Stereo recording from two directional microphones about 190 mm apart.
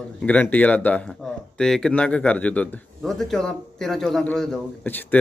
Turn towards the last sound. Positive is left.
turn(degrees=10)  # may be behind; listen again after turning